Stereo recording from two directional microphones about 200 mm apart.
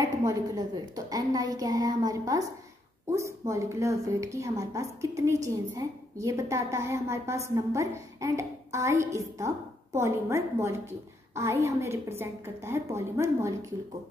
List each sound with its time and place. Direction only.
0.2 s a woman's voice: 15° right (ahead or behind)